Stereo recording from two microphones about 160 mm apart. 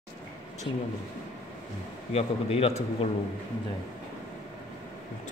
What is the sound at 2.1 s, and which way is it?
Speech, 40° left (ahead or behind).